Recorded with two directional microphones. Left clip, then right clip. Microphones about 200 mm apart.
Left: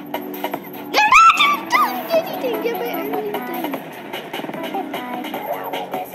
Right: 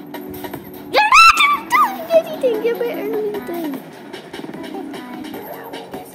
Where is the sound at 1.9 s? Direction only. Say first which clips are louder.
Right 1 dB; 5° right (ahead or behind).